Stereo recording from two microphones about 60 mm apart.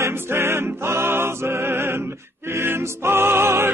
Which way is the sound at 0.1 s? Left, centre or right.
Right.